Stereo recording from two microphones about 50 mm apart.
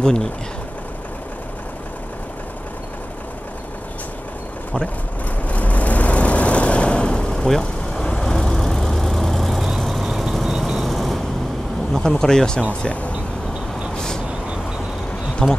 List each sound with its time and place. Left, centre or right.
0.0 s speech: centre
5.5 s vehicle: left; by 10.0 s centre
10.0 s vehicle: centre
10.8 s vehicle: centre
11.9 s speech: centre
13.9 s vehicle: centre
15.4 s speech: centre